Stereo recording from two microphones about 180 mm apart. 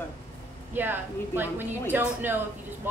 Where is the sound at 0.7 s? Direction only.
10° right (ahead or behind).